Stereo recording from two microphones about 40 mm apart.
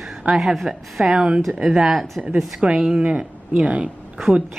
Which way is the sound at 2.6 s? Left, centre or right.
Right.